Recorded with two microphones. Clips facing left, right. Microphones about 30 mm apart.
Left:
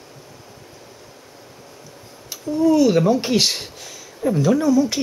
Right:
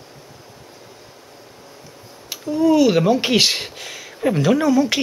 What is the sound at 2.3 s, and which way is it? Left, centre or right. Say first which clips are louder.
Speech: right 1 dB; right.